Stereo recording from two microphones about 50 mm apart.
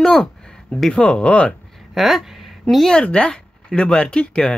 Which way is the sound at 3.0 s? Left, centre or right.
Left.